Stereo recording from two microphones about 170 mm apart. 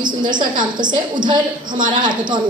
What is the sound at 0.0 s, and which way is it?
A woman's voice, 25° right (ahead or behind).